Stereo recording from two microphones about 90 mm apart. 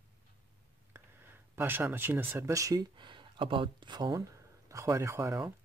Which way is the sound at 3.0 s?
60° right (ahead or behind).